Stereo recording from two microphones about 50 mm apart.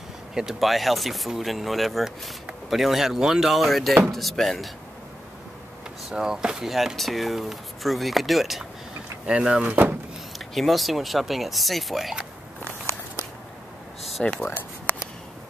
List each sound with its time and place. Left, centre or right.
0.3 s speech: centre
6.0 s speech: centre
9.2 s speech: centre
10.5 s speech: centre
14.2 s speech: centre